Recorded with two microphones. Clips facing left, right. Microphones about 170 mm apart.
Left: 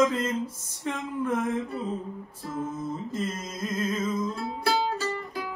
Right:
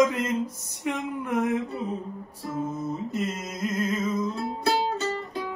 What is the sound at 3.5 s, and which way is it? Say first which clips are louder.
Music: right 2 dB; 15° right (ahead or behind).